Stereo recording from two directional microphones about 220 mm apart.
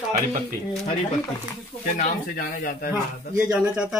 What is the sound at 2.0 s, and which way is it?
Speech, 35° left (ahead or behind).